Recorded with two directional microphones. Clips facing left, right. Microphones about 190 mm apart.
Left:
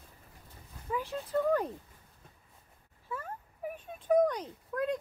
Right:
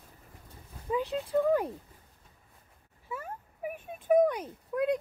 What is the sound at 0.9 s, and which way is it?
Speech, 20° right (ahead or behind).